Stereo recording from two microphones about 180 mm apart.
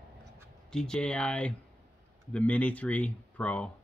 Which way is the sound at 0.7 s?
5° left (ahead or behind).